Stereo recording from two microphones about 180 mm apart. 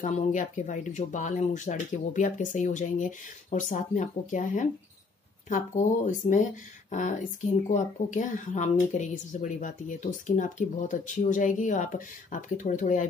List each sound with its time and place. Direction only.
0.0 s speech: 45° left (ahead or behind)